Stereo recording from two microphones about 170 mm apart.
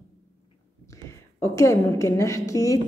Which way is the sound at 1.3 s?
15° left (ahead or behind).